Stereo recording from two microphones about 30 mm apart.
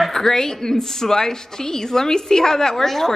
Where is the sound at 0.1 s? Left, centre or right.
Centre.